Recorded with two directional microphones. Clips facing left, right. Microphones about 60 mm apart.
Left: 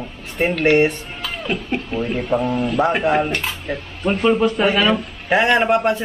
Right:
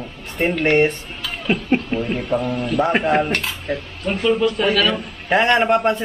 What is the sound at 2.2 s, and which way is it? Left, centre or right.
Speech, centre.